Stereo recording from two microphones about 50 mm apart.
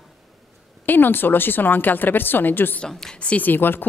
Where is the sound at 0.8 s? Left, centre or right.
Left.